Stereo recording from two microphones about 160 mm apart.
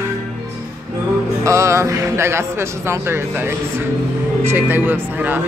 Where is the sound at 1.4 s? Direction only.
20° right (ahead or behind).